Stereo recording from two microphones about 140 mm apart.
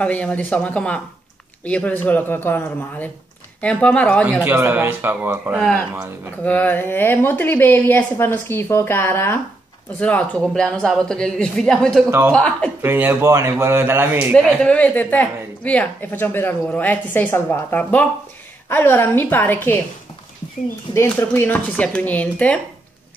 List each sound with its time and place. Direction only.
0.0 s speech: 10° left (ahead or behind)
4.4 s a man's voice: 15° right (ahead or behind)
6.4 s speech: 10° left (ahead or behind)
12.8 s a man's voice: 15° right (ahead or behind)
14.3 s speech: 5° left (ahead or behind)
20.9 s speech: 20° left (ahead or behind)